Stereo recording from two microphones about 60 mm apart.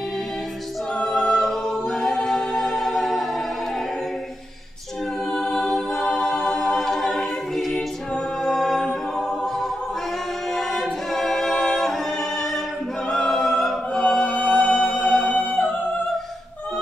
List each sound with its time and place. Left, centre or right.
1.0 s a capella: centre
5.3 s a capella: centre
8.5 s music: centre
10.5 s a capella: centre
13.1 s music: centre
15.3 s music: left